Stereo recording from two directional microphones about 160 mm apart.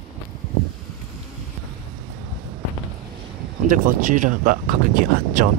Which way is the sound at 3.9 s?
55° right (ahead or behind).